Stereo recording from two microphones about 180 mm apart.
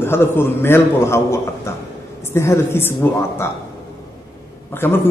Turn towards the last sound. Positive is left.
turn(degrees=15)  # may be behind; listen again after turning